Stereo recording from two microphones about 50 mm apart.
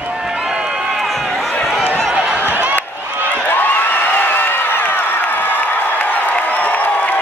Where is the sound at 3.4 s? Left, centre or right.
Left.